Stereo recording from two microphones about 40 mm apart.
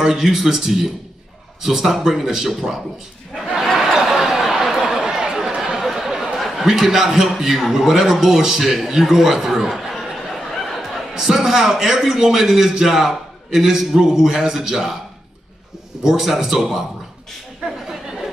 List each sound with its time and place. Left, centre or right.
0.0 s a man's voice: centre
3.6 s a sound: centre
5.0 s chatter: centre
5.8 s a sound: centre
6.6 s a man's voice: centre
16.0 s a man's voice: centre